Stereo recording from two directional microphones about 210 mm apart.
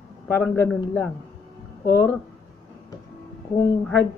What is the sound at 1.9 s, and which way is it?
Speech, 10° left (ahead or behind).